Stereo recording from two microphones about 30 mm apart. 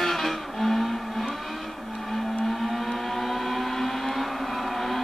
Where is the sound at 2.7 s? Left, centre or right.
Centre.